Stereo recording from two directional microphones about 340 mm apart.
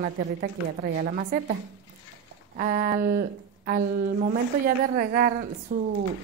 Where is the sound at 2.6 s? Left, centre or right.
Right.